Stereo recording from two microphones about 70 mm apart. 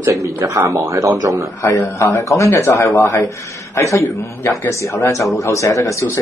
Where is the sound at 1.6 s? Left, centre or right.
Left.